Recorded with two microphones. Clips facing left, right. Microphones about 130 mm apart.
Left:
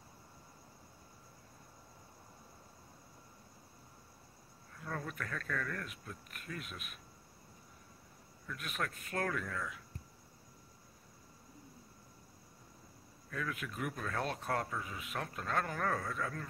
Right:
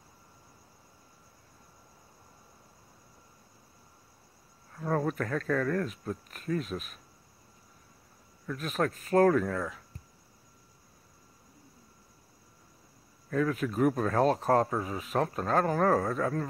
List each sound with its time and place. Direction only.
4.7 s speech: 45° right (ahead or behind)
8.5 s speech: 35° right (ahead or behind)
13.3 s speech: 40° right (ahead or behind)